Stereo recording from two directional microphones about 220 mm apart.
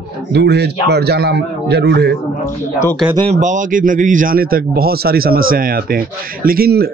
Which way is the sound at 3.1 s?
25° right (ahead or behind).